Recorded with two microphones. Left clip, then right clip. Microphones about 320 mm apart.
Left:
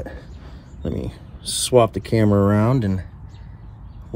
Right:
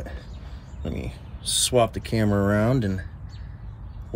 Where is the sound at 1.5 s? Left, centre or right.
Centre.